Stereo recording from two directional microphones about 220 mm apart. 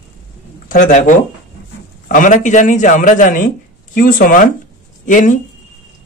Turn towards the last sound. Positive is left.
turn(degrees=35)  # may be behind; listen again after turning